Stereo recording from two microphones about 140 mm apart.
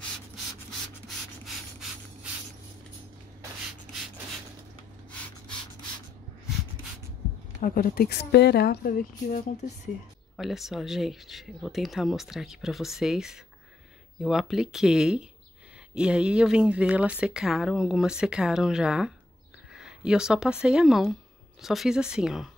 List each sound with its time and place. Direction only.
7.6 s a woman's voice: 90° left
10.3 s speech: centre (ahead or behind)